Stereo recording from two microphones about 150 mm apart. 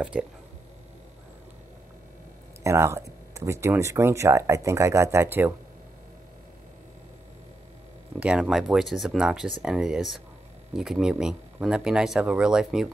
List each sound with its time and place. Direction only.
2.6 s speech: 20° right (ahead or behind)
8.2 s speech: 5° right (ahead or behind)